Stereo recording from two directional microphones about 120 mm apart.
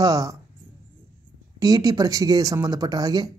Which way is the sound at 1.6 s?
30° right (ahead or behind).